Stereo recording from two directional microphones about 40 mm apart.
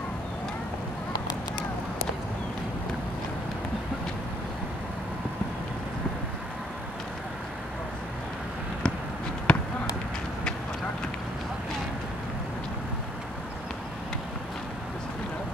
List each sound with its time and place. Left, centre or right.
8.8 s basketball bounce: left